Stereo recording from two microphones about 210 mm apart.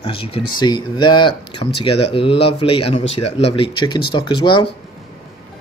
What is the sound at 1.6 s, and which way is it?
Speech, 40° left (ahead or behind).